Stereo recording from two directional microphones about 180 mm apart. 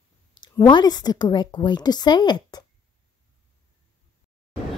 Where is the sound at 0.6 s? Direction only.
25° left (ahead or behind).